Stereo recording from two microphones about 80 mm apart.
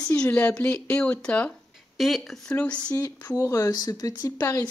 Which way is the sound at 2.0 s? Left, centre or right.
Centre.